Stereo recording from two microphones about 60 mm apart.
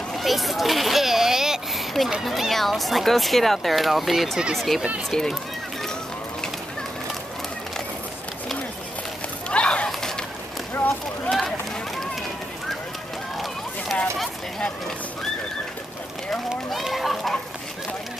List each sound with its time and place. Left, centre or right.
0.1 s speech: centre
9.5 s a sound: centre
10.7 s clip-clop: left
11.2 s run: centre
16.8 s speech: centre